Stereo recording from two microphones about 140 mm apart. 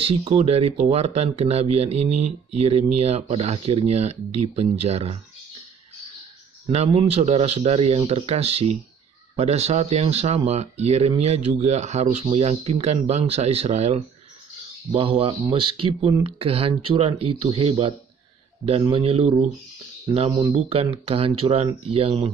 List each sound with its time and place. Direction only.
0.1 s speech: 50° right (ahead or behind)
7.1 s speech: 50° right (ahead or behind)
14.9 s speech: 40° right (ahead or behind)
20.1 s speech: 30° right (ahead or behind)
20.5 s speech: 45° right (ahead or behind)